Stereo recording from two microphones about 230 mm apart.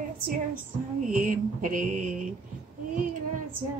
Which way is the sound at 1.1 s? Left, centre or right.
Right.